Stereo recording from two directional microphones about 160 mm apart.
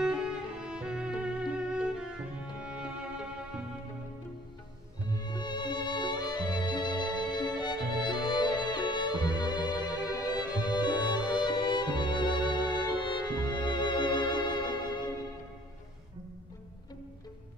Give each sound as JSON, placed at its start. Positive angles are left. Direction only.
{"t": 0.0, "sound": "music", "side_deg": -5}
{"t": 5.1, "sound": "music", "side_deg": 25}